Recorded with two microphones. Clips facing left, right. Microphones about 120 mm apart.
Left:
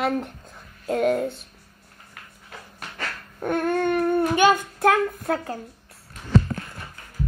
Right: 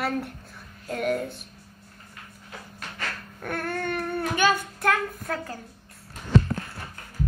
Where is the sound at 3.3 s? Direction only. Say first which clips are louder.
Left 8 dB; 20° left (ahead or behind).